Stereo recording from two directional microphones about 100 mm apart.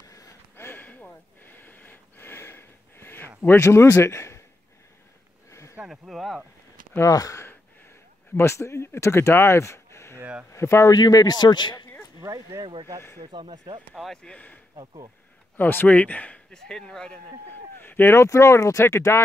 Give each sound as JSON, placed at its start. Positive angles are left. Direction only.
{"t": 0.0, "sound": "a sound", "side_deg": 35}
{"t": 0.7, "sound": "a sound", "side_deg": 20}
{"t": 3.3, "sound": "speech", "side_deg": 25}
{"t": 5.5, "sound": "a sound", "side_deg": 30}
{"t": 5.9, "sound": "speech", "side_deg": 0}
{"t": 7.0, "sound": "speech", "side_deg": 35}
{"t": 11.0, "sound": "a man's voice", "side_deg": 40}
{"t": 12.2, "sound": "speech", "side_deg": -30}
{"t": 13.2, "sound": "speech", "side_deg": -55}
{"t": 13.9, "sound": "speech", "side_deg": 5}
{"t": 17.7, "sound": "speech", "side_deg": 20}